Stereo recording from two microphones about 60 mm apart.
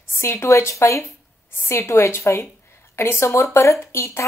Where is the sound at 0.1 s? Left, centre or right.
Left.